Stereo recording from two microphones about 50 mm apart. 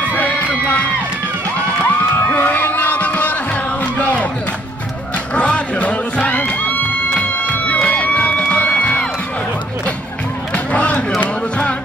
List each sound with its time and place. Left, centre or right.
0.1 s crowd: left
1.8 s music: left
5.3 s music: left
6.3 s music: left
10.5 s a sound: left